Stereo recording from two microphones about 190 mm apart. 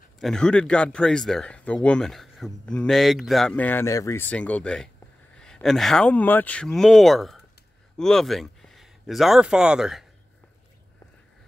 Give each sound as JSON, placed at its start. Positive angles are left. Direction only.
{"t": 0.2, "sound": "speech", "side_deg": 5}